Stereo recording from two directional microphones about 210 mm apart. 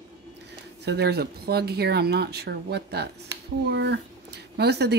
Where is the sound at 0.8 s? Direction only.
50° right (ahead or behind).